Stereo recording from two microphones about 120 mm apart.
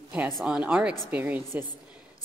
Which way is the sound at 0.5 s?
10° right (ahead or behind).